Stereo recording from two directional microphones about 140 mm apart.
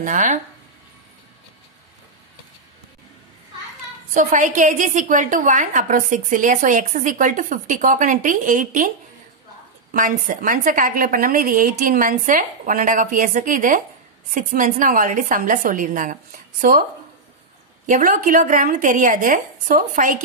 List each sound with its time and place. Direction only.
0.0 s speech: 65° right (ahead or behind)
4.1 s a woman's voice: 70° right (ahead or behind)
17.8 s a woman's voice: 70° right (ahead or behind)